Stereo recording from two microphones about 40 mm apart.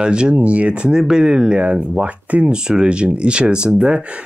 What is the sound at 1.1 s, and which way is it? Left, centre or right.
Speech, centre.